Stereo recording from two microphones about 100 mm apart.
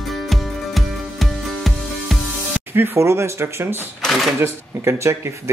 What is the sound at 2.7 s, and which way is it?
Speech, 25° right (ahead or behind).